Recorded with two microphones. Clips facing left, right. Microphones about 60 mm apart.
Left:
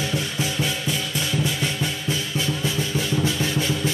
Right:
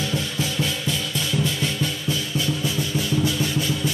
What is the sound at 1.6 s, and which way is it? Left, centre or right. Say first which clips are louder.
Drum: even; left.